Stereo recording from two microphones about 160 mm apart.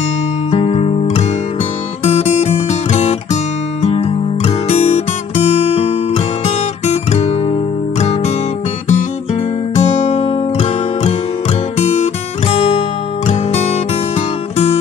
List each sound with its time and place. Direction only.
0.5 s music: 40° left (ahead or behind)
2.0 s guitar: 40° left (ahead or behind)
4.6 s guitar: 40° left (ahead or behind)
9.3 s guitar: 40° left (ahead or behind)
11.8 s music: 40° left (ahead or behind)